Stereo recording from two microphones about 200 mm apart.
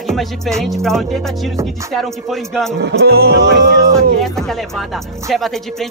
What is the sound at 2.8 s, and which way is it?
Speech, 55° right (ahead or behind).